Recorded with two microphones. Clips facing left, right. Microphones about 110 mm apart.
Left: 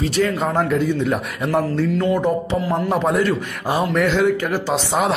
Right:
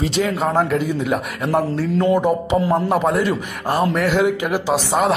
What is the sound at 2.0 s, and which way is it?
Mantra, 25° right (ahead or behind).